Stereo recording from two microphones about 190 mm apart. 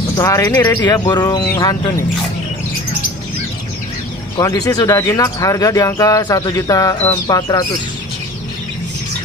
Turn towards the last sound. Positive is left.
turn(degrees=20)  # may be behind; listen again after turning